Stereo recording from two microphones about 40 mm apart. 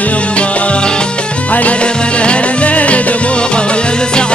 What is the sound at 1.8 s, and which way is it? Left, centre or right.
Music, left.